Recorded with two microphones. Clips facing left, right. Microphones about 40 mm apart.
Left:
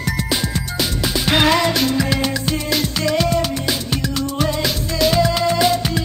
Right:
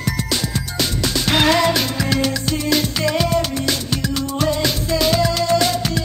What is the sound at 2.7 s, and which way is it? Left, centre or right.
Music, centre.